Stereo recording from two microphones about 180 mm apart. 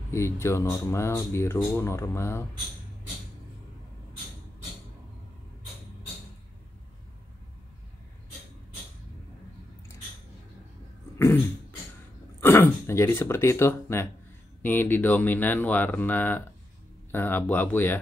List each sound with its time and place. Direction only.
0.1 s speech: 15° left (ahead or behind)
12.4 s speech: 10° left (ahead or behind)